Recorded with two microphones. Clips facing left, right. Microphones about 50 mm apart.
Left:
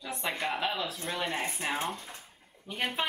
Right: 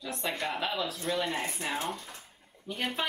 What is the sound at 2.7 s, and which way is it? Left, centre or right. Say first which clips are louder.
Speech: left 1 dB; centre.